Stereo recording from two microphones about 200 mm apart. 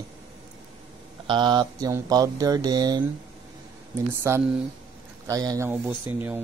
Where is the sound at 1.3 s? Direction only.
20° right (ahead or behind).